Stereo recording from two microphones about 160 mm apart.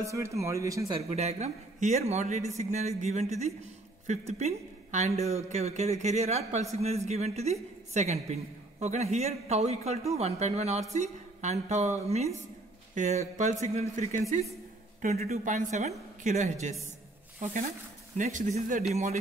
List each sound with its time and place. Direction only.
0.0 s speech: 20° right (ahead or behind)
0.9 s a man's voice: 40° right (ahead or behind)
15.3 s a man's voice: 50° right (ahead or behind)